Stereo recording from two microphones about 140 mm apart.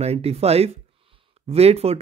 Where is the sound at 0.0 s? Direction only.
45° right (ahead or behind).